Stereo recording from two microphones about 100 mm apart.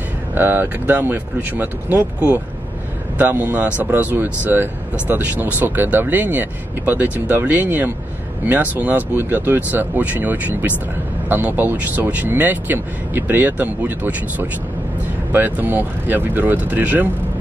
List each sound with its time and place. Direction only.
0.3 s speech: 20° right (ahead or behind)